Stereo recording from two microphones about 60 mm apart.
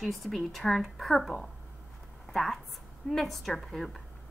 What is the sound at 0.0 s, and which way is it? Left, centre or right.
A woman's voice, centre.